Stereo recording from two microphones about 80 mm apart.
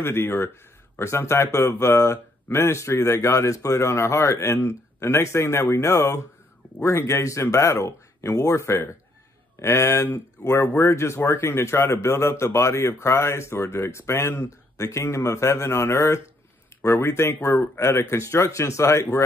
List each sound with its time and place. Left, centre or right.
0.0 s speech: left